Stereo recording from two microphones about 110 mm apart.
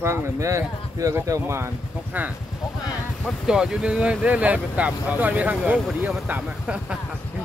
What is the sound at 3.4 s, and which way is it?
Speech, 5° right (ahead or behind).